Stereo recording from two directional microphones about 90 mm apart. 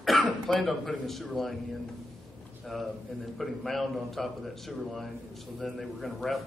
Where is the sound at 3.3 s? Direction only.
Centre (ahead or behind).